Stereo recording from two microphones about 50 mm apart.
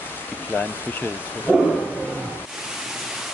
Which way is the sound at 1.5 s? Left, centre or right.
Left.